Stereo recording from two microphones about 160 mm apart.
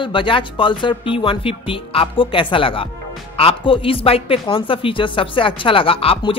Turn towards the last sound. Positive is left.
turn(degrees=35)  # may be behind; listen again after turning